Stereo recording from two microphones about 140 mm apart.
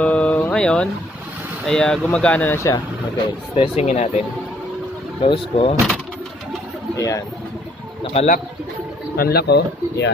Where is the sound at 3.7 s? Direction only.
55° left (ahead or behind).